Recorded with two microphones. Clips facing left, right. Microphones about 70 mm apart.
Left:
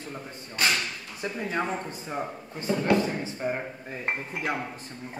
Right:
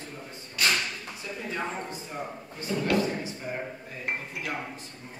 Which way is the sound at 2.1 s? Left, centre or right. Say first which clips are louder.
Left 4 dB; left.